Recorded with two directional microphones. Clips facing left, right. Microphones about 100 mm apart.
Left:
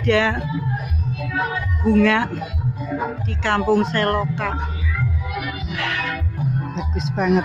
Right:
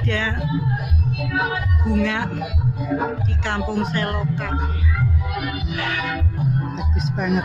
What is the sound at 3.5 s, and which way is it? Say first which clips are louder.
Speech: left 7 dB; 90° left.